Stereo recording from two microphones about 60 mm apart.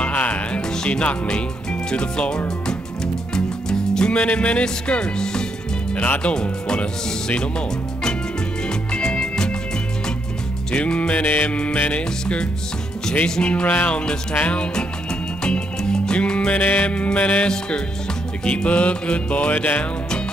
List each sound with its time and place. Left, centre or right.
0.0 s music: left
5.9 s music: left
6.3 s speech: centre
8.6 s music: centre
10.7 s music: centre